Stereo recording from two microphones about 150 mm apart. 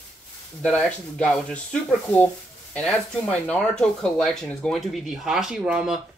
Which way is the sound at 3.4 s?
5° left (ahead or behind).